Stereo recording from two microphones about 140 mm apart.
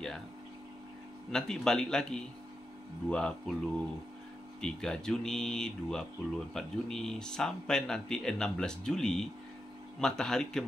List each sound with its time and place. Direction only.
1.3 s speech: 5° left (ahead or behind)